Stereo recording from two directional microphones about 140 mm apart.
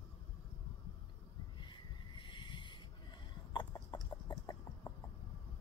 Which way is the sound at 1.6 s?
35° left (ahead or behind).